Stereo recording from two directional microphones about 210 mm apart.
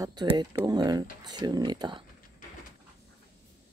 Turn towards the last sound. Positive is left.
turn(degrees=-20)  # may be behind; listen again after turning